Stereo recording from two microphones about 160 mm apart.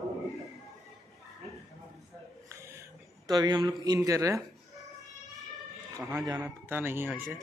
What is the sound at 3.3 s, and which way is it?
Speech, 25° right (ahead or behind).